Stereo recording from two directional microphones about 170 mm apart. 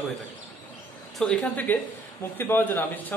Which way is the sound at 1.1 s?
5° left (ahead or behind).